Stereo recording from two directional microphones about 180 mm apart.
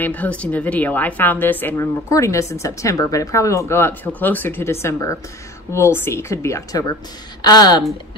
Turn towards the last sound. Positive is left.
turn(degrees=25)  # may be behind; listen again after turning